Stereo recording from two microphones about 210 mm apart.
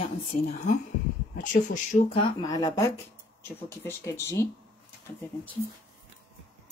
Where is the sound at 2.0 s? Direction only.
25° left (ahead or behind).